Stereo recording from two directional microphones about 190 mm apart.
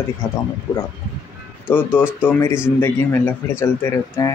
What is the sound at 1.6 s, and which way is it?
Speech, 10° left (ahead or behind).